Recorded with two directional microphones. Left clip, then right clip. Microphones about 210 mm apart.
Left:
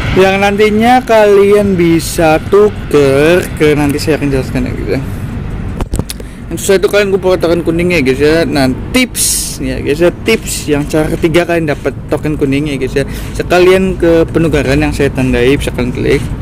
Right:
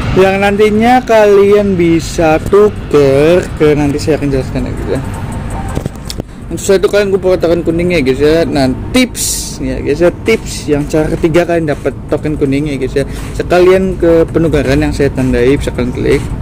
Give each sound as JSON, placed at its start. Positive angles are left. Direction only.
{"t": 0.2, "sound": "speech", "side_deg": 0}
{"t": 6.5, "sound": "speech", "side_deg": 0}